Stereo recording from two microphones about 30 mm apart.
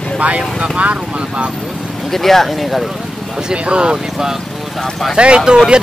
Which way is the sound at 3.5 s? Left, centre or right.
Right.